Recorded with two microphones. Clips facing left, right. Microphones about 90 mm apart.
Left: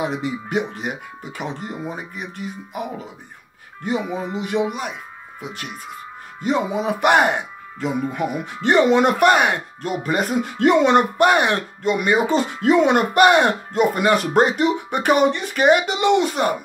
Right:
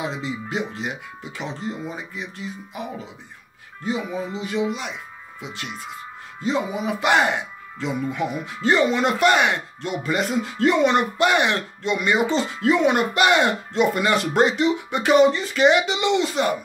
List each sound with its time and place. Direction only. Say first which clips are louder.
0.0 s speech: left 4 dB; 60° left (ahead or behind)
4.2 s speech: left 3 dB; 60° left (ahead or behind)
6.8 s speech: left 3 dB; 60° left (ahead or behind)
10.4 s speech: left 4 dB; 55° left (ahead or behind)